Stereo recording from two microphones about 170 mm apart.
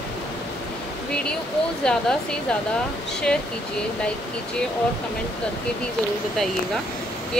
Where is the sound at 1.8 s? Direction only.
5° left (ahead or behind).